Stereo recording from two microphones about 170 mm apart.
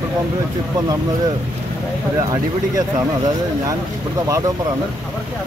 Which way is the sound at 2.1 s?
20° right (ahead or behind).